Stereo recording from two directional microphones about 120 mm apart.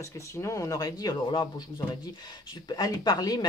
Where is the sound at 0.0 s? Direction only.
25° left (ahead or behind).